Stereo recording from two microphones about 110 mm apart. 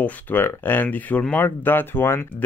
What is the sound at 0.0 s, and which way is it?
Speech, 15° left (ahead or behind).